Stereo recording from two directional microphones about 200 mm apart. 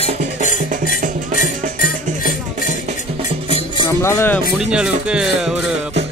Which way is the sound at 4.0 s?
10° left (ahead or behind).